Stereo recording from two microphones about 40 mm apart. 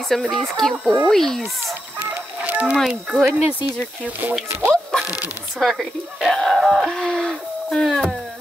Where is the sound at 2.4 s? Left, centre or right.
Right.